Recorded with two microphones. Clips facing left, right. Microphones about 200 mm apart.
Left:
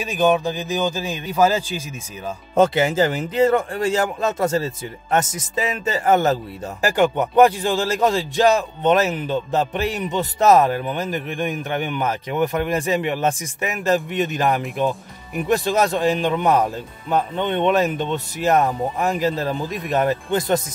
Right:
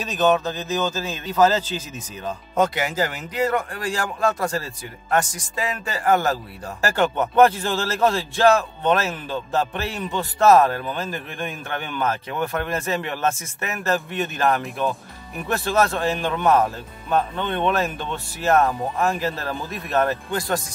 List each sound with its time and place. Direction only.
0.0 s speech: 10° left (ahead or behind)
2.5 s speech: 30° left (ahead or behind)